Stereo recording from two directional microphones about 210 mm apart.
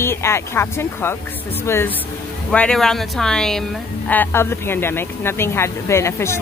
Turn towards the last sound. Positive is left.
turn(degrees=10)  # may be behind; listen again after turning